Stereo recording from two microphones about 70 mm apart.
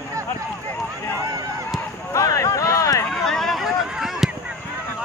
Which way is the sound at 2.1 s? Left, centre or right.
Left.